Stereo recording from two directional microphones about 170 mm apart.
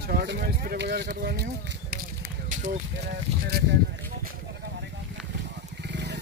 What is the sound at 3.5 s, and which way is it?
Speech, 70° right (ahead or behind).